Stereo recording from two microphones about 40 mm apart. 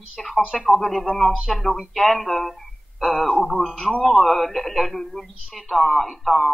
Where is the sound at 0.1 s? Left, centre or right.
Centre.